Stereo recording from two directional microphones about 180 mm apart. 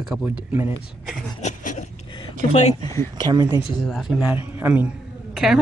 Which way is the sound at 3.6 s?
Centre (ahead or behind).